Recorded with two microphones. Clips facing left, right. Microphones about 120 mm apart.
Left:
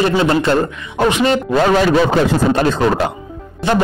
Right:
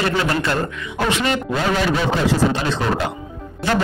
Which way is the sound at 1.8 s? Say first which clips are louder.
Left 6 dB; 50° left (ahead or behind).